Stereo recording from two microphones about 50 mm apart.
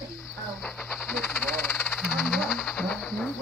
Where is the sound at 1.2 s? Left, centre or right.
Left.